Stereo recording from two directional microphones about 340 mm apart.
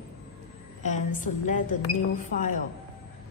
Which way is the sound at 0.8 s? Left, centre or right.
Left.